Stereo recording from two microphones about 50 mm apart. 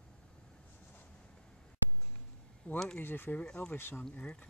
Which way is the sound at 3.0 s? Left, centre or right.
Left.